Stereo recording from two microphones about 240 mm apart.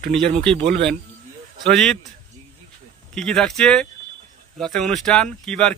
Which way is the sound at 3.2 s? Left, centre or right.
Centre.